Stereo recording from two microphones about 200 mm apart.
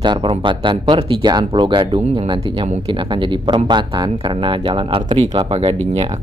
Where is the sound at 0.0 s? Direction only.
25° right (ahead or behind).